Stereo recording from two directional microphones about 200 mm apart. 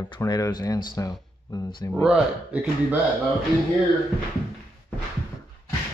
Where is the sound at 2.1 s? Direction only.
5° right (ahead or behind).